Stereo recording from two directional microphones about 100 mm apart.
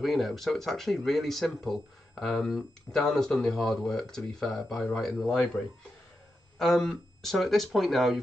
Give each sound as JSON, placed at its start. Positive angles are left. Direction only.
{"t": 0.0, "sound": "speech", "side_deg": 0}
{"t": 6.6, "sound": "speech", "side_deg": 0}